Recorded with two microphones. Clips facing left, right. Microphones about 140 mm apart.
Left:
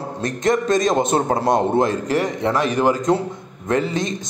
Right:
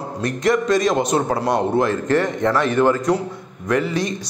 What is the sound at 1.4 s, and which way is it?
Speech, 25° left (ahead or behind).